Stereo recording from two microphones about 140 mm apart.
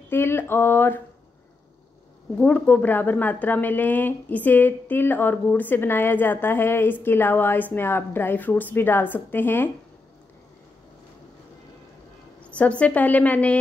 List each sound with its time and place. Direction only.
0.1 s speech: 15° left (ahead or behind)
2.3 s speech: 10° left (ahead or behind)
12.4 s speech: 10° left (ahead or behind)